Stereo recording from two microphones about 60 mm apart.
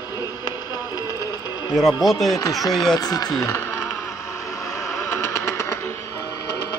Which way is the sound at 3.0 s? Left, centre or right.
Left.